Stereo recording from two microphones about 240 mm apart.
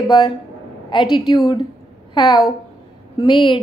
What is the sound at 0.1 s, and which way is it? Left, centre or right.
A woman's voice, centre.